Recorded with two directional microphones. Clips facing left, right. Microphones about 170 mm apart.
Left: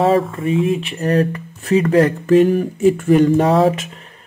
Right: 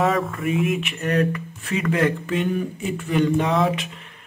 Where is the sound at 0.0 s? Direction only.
30° left (ahead or behind).